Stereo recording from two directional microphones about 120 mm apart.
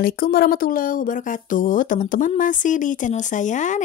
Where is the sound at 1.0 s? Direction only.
90° left.